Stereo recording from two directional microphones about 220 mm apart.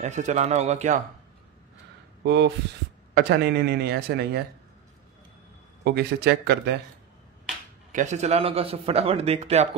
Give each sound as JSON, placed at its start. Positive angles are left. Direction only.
{"t": 0.0, "sound": "speech", "side_deg": -30}
{"t": 2.2, "sound": "a man's voice", "side_deg": -50}
{"t": 5.9, "sound": "a man's voice", "side_deg": -50}
{"t": 7.9, "sound": "a man's voice", "side_deg": -35}